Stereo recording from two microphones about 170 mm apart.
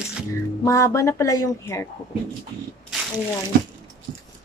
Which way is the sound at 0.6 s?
15° left (ahead or behind).